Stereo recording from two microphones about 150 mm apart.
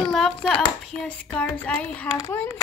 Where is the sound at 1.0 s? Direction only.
5° left (ahead or behind).